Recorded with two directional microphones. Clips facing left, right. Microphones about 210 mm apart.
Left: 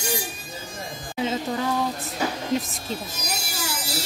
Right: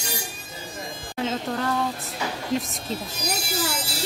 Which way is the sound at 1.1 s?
5° left (ahead or behind).